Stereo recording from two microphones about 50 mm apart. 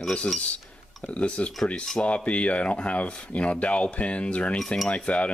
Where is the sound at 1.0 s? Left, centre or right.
Left.